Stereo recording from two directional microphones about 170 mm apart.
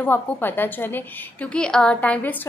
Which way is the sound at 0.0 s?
10° left (ahead or behind).